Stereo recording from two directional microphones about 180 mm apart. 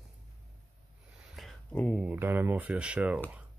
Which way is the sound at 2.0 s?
10° right (ahead or behind).